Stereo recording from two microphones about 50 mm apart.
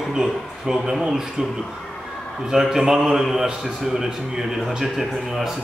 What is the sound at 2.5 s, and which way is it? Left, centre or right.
A man's voice, centre.